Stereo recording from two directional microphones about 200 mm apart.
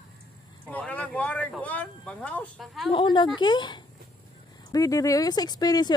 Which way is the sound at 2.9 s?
25° left (ahead or behind).